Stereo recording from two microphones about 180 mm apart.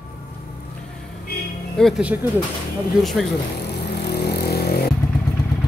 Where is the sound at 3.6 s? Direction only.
65° left (ahead or behind).